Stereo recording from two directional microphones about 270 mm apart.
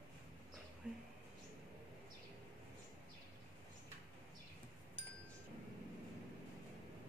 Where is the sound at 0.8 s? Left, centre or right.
Centre.